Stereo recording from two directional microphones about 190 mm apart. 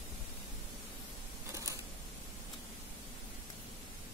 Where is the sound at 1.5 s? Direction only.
15° right (ahead or behind).